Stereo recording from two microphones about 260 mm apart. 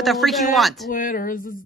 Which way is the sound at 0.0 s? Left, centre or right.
Centre.